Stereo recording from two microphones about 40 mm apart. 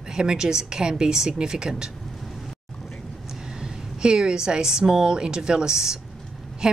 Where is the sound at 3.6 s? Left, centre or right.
Right.